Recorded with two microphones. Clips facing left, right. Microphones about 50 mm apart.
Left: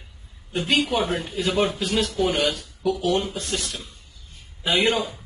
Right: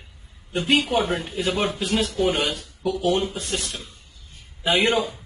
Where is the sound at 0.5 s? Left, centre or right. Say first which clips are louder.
Right 1 dB; right.